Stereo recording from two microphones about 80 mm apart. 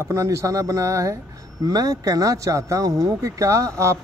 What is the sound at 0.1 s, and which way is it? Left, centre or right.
Speech, right.